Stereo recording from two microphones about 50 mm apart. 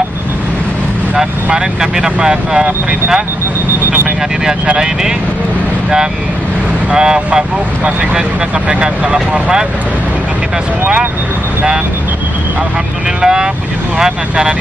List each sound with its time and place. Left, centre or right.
1.1 s speech: centre
6.9 s speech: centre
13.2 s speech: centre